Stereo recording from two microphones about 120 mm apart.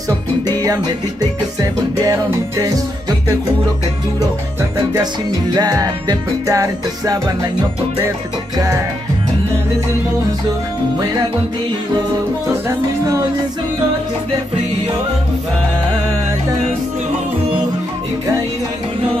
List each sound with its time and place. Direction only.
0.4 s music: 30° right (ahead or behind)
4.6 s music: 30° right (ahead or behind)
12.6 s music: 25° right (ahead or behind)